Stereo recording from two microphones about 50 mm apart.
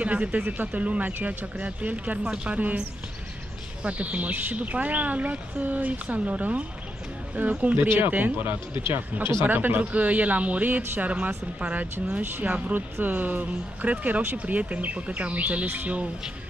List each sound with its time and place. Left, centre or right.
0.0 s speech: right
2.2 s speech: centre
2.5 s speech: right
3.8 s speech: right